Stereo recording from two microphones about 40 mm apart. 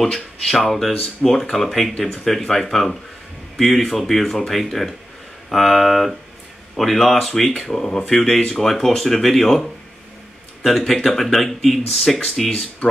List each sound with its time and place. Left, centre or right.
0.0 s speech: centre
10.9 s speech: centre
12.4 s speech: centre